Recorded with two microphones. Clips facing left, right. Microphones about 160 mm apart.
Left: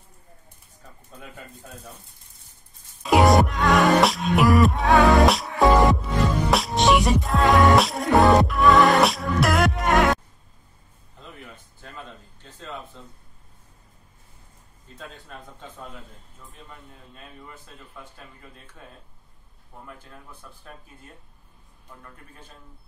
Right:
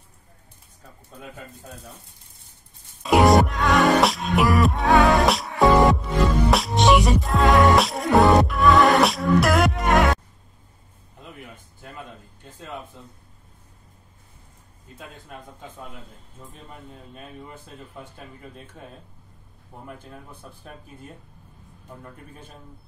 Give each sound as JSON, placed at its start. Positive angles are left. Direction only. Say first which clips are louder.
{"t": 3.1, "sound": "music", "louder": "right 1 dB", "side_deg": 0}
{"t": 12.5, "sound": "a man's voice", "louder": "right 1 dB", "side_deg": -15}
{"t": 15.0, "sound": "a man's voice", "louder": "even", "side_deg": -10}
{"t": 17.1, "sound": "a man's voice", "louder": "right 4 dB", "side_deg": -15}
{"t": 17.5, "sound": "speech", "louder": "right 4 dB", "side_deg": -25}